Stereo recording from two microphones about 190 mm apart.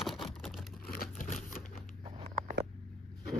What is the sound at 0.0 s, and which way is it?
Vehicle, centre (ahead or behind).